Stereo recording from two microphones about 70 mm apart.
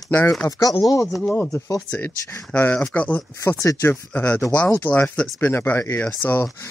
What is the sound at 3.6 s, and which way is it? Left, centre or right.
Speech, left.